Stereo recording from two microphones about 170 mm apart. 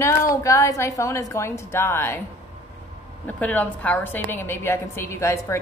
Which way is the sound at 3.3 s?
10° left (ahead or behind).